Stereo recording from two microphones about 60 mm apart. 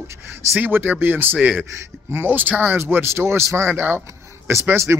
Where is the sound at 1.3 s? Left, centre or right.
Centre.